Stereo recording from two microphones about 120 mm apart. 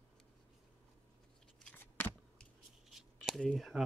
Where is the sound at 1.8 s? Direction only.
15° left (ahead or behind).